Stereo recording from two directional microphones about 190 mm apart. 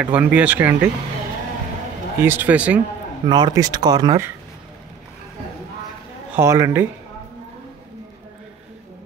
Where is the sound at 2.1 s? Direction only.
10° right (ahead or behind).